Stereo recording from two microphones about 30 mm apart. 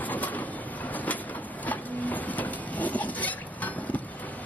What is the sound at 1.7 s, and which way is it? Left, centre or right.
Printer, left.